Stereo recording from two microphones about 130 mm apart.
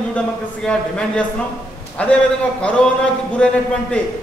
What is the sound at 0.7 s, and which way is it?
A man's voice, 10° left (ahead or behind).